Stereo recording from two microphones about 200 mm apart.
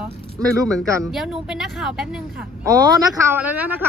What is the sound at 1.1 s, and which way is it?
Speech, centre (ahead or behind).